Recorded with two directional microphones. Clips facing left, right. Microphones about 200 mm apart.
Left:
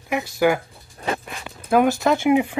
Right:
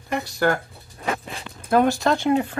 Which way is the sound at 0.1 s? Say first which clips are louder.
Left 3 dB; 10° left (ahead or behind).